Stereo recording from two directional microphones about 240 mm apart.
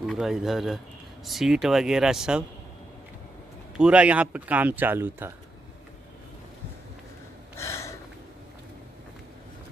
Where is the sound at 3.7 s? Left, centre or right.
Centre.